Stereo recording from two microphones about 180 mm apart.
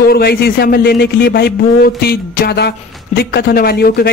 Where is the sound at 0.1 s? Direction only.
60° left (ahead or behind).